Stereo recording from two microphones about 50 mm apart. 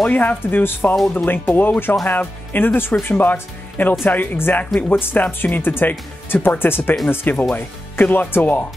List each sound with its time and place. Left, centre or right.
0.1 s speech: left
0.4 s speech: left